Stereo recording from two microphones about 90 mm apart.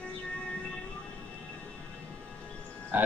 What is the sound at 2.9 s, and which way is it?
Speech, 20° right (ahead or behind).